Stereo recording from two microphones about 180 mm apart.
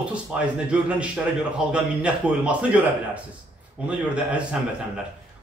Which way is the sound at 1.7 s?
5° right (ahead or behind).